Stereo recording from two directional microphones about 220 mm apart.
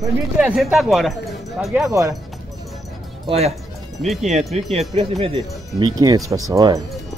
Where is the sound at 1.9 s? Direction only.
15° right (ahead or behind).